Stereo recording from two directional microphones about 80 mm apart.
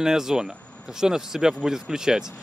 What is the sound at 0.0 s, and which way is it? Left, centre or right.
Speech, centre.